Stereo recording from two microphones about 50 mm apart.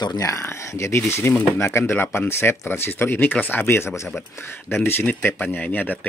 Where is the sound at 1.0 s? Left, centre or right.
Left.